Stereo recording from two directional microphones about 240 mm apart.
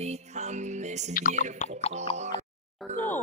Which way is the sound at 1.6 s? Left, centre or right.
Left.